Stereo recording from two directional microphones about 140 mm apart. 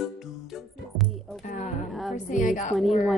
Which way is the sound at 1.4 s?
65° left (ahead or behind).